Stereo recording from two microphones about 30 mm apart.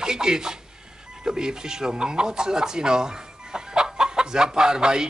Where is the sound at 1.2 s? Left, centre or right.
Right.